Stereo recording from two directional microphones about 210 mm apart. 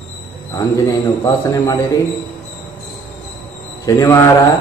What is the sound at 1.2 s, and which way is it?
Speech, 15° left (ahead or behind).